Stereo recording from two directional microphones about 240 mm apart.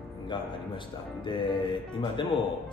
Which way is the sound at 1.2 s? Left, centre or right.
Centre.